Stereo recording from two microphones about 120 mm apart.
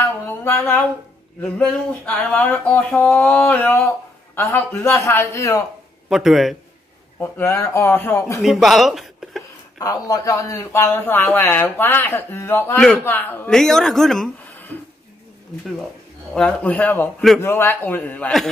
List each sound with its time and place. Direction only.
0.0 s a sound: 20° left (ahead or behind)
1.4 s speech: 10° left (ahead or behind); by 5.6 s 25° left (ahead or behind)
6.0 s a man's voice: 5° right (ahead or behind)
7.2 s speech: 20° left (ahead or behind)
8.4 s speech: centre (ahead or behind)
9.8 s speech: 30° left (ahead or behind)
13.5 s a man's voice: 5° left (ahead or behind)
16.3 s speech: 10° left (ahead or behind)